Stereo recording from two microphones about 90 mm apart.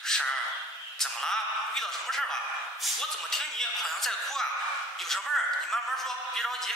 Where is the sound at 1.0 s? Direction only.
5° left (ahead or behind).